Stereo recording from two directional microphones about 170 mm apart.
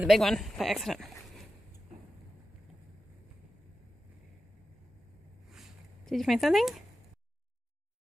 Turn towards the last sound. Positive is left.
turn(degrees=0)  # may be behind; listen again after turning